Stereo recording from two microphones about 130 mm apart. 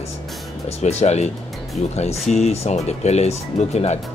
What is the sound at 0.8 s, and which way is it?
Speech, 60° left (ahead or behind).